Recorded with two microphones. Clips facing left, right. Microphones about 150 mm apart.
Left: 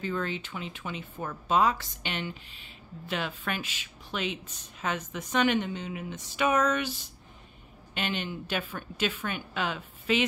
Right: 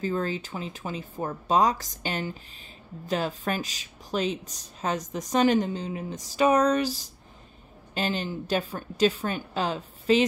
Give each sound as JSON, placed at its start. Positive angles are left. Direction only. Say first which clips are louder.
{"t": 0.0, "sound": "a woman's voice", "louder": "right 4 dB", "side_deg": -35}